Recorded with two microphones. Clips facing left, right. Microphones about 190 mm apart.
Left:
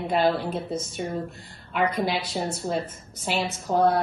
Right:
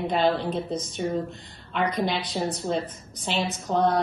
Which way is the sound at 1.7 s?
5° left (ahead or behind).